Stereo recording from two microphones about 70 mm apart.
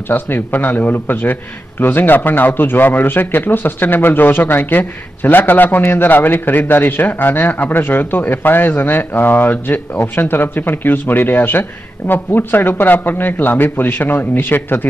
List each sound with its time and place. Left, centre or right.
0.1 s a man's voice: left